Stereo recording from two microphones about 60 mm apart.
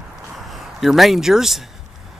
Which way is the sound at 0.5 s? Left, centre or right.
Centre.